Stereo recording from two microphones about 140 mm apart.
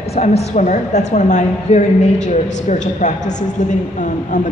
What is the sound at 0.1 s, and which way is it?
A woman's voice, 50° left (ahead or behind).